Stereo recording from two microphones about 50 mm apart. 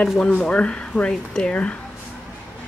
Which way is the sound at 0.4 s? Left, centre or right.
Left.